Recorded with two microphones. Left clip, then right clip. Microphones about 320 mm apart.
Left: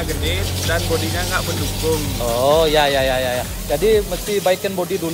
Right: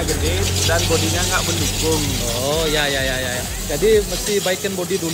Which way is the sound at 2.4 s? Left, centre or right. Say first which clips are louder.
Left 6 dB; centre.